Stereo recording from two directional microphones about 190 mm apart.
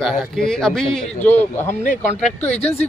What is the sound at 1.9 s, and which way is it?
Speech, 35° left (ahead or behind).